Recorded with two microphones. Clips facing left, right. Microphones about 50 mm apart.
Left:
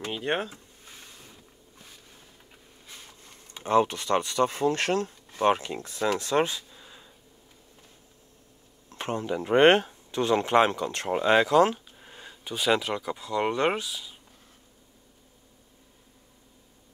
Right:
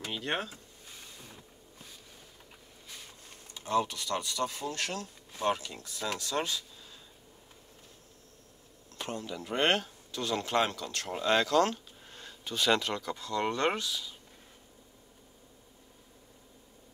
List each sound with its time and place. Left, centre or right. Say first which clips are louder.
0.1 s speech: left 5 dB; left
3.5 s speech: left 7 dB; left
8.9 s speech: left 8 dB; left; by 14.1 s centre